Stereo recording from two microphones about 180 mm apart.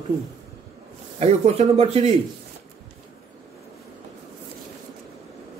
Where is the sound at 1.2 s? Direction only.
35° right (ahead or behind).